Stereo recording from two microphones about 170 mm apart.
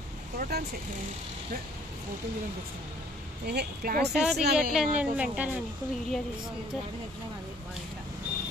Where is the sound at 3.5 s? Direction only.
65° right (ahead or behind).